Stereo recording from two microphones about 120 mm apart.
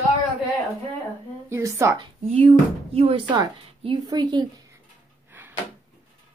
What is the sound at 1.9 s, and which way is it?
Speech, 45° right (ahead or behind).